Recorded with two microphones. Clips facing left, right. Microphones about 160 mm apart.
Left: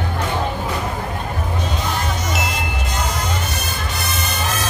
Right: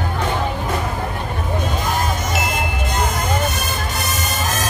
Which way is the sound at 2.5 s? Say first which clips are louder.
Right 2 dB; 55° right (ahead or behind).